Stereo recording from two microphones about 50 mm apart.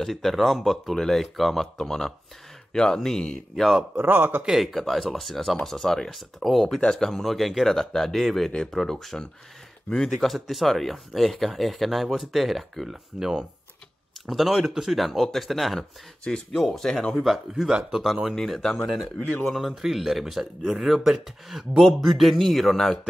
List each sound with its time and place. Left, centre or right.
0.0 s speech: centre
3.9 s speech: right
4.6 s speech: centre
16.3 s speech: centre
16.7 s speech: centre
17.6 s speech: centre
18.6 s speech: centre
19.4 s speech: centre